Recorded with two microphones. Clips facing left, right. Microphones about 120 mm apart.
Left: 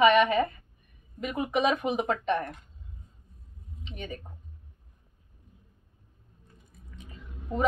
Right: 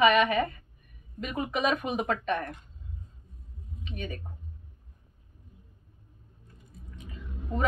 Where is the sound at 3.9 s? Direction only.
25° left (ahead or behind).